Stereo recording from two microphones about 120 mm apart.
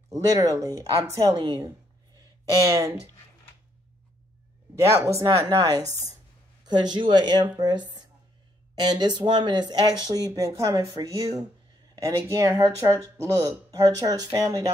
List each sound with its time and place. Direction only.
0.1 s speech: 25° right (ahead or behind)
1.3 s speech: 40° right (ahead or behind)
2.6 s speech: 25° right (ahead or behind)
4.8 s speech: 25° right (ahead or behind)